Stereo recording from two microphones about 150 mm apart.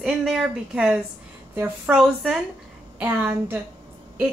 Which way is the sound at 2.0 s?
Centre (ahead or behind).